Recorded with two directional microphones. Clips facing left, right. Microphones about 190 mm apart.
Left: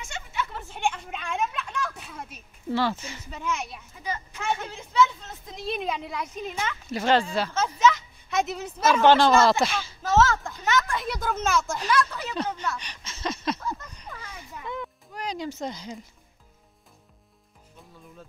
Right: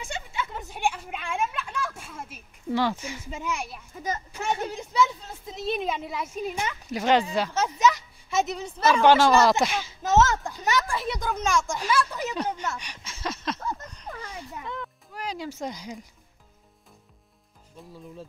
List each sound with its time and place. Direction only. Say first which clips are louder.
0.0 s a sound: even; 30° right (ahead or behind); by 2.4 s 5° right (ahead or behind)
2.7 s speech: right 1 dB; 15° right (ahead or behind)
5.0 s speech: left 3 dB; 10° right (ahead or behind)
8.5 s speech: left 1 dB; 5° left (ahead or behind)
9.0 s speech: even; 10° right (ahead or behind)
11.0 s speech: even; centre (ahead or behind)
11.8 s speech: even; 10° right (ahead or behind)
13.4 s a sound: left 2 dB; 5° left (ahead or behind)
15.1 s speech: left 1 dB; 5° right (ahead or behind)